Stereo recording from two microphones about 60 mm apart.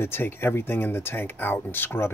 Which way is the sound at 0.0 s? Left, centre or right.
Left.